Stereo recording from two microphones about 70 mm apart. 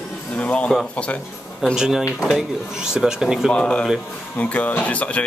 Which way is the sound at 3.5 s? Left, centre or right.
Centre.